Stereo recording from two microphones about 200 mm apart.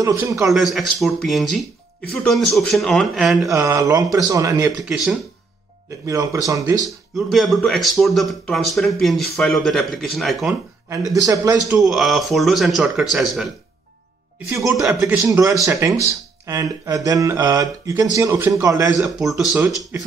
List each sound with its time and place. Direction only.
0.0 s speech: 15° right (ahead or behind)
0.5 s speech: centre (ahead or behind)
3.4 s speech: 15° right (ahead or behind)
4.8 s speech: centre (ahead or behind)
6.0 s speech: 15° right (ahead or behind)
6.9 s speech: centre (ahead or behind)
10.9 s speech: 15° right (ahead or behind)
11.8 s speech: centre (ahead or behind)
14.8 s speech: 15° right (ahead or behind)
18.9 s speech: centre (ahead or behind)